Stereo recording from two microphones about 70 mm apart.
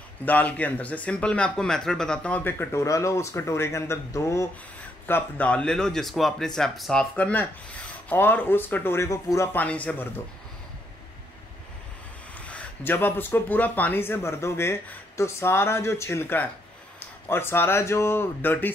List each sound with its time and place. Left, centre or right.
0.2 s speech: left
2.7 s speech: left
5.0 s speech: left
5.5 s speech: centre
7.2 s speech: left
9.1 s speech: left
9.5 s speech: left
12.8 s speech: left